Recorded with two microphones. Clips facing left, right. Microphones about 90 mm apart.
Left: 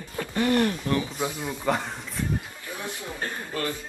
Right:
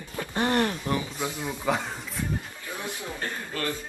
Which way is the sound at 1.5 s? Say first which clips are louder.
Even; centre (ahead or behind).